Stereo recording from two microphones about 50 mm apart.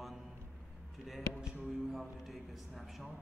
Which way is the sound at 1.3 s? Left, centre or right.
Centre.